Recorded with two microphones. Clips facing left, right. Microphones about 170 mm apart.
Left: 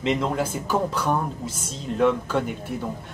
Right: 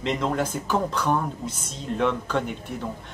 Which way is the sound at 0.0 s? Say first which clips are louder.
Left 1 dB; 5° left (ahead or behind).